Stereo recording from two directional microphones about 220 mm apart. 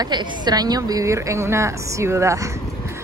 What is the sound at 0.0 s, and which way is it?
Speech, 20° right (ahead or behind).